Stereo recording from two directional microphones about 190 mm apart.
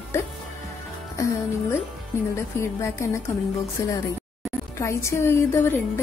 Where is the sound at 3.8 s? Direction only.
15° left (ahead or behind).